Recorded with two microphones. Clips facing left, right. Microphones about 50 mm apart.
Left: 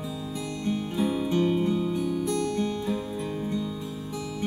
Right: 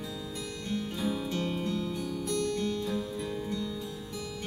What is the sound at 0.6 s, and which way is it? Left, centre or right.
Music, centre.